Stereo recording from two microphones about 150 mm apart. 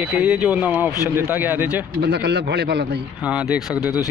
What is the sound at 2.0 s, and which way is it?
Speech, 90° right.